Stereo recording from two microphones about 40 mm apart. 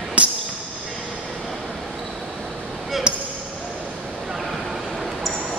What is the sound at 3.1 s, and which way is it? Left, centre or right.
Basketball bounce, right.